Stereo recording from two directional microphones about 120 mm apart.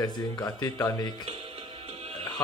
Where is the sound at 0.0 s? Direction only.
35° left (ahead or behind).